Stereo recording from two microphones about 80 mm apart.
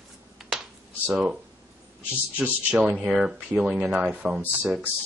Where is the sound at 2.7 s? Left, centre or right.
Centre.